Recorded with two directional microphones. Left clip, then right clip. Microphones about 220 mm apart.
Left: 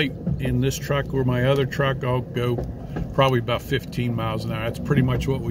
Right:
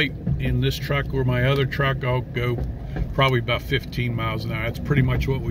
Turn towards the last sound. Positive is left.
turn(degrees=10)  # may be behind; listen again after turning